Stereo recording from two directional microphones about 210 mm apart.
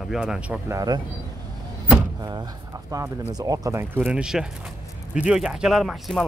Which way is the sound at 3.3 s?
15° right (ahead or behind).